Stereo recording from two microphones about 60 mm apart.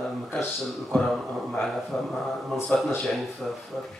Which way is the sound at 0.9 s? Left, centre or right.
Centre.